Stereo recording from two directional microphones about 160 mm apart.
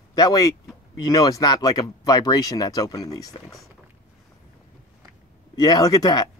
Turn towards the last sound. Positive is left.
turn(degrees=25)  # may be behind; listen again after turning